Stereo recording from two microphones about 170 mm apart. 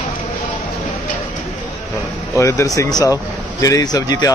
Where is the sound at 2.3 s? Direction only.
15° left (ahead or behind).